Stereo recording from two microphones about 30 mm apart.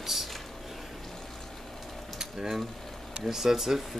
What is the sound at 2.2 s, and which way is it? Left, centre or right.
Mechanisms, centre.